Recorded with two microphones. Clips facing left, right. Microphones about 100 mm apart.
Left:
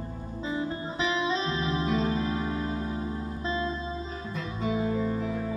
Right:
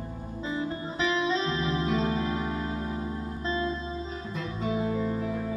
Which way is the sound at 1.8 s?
5° left (ahead or behind).